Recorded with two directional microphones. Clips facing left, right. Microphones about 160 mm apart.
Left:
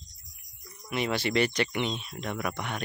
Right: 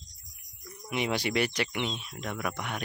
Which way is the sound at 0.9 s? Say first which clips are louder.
Left 1 dB; 15° right (ahead or behind).